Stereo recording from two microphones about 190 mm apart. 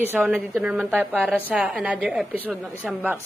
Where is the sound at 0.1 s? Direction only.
10° right (ahead or behind).